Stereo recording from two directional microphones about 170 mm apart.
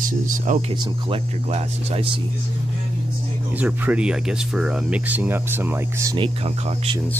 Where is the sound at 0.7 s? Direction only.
25° right (ahead or behind).